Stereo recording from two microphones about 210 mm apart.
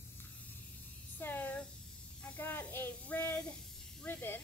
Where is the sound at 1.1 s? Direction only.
10° left (ahead or behind).